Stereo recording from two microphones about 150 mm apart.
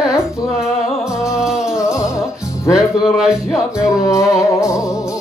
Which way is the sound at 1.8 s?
20° left (ahead or behind).